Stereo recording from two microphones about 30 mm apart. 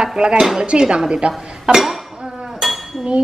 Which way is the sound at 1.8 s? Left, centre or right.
Centre.